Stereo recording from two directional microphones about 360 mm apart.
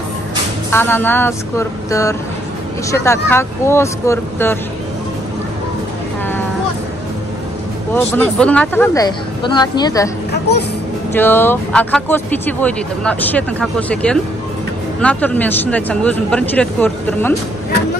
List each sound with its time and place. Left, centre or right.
0.7 s speech: centre
7.9 s speech: centre
11.1 s speech: centre